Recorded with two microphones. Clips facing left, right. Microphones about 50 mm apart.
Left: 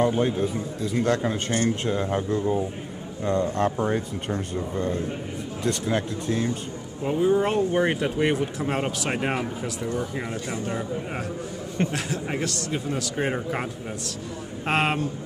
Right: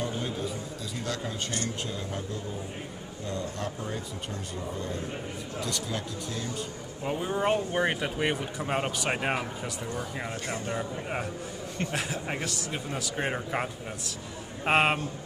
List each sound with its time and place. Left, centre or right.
0.0 s speech: left
7.0 s speech: centre
10.7 s speech: centre